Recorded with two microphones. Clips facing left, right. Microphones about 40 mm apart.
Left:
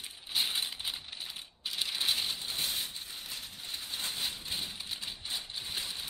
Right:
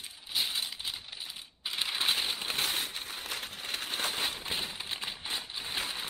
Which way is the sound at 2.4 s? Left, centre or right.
Right.